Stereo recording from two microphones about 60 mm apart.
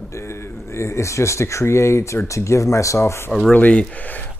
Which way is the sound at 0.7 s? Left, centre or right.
Left.